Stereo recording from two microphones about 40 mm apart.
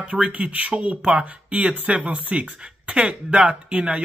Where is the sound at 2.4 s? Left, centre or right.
Right.